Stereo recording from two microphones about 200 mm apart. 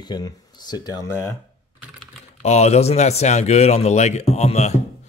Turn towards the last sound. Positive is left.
turn(degrees=35)  # may be behind; listen again after turning